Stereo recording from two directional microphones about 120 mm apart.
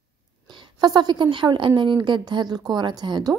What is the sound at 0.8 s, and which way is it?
Speech, 35° right (ahead or behind).